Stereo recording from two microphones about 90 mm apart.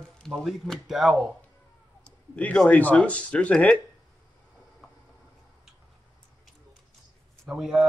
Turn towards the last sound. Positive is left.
turn(degrees=-5)  # may be behind; listen again after turning